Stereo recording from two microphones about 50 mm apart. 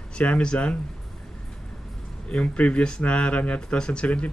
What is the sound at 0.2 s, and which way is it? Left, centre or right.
Speech, left.